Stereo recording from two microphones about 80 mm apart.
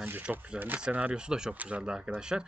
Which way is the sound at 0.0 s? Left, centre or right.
Right.